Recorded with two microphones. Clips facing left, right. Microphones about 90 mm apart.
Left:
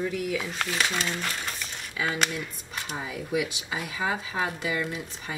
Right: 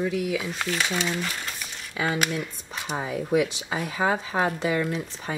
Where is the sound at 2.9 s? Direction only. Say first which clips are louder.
Right 6 dB; 40° right (ahead or behind).